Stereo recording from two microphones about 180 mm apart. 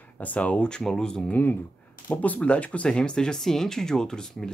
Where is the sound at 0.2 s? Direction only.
10° left (ahead or behind).